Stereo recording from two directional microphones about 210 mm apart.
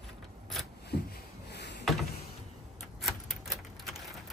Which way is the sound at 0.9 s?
50° left (ahead or behind).